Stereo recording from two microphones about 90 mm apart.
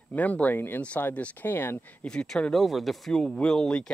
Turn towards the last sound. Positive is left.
turn(degrees=10)  # may be behind; listen again after turning